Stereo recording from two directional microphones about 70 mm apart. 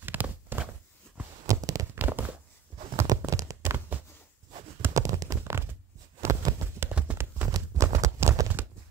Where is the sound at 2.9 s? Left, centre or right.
Right.